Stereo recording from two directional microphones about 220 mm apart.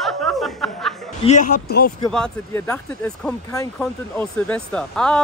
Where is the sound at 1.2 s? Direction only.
35° left (ahead or behind).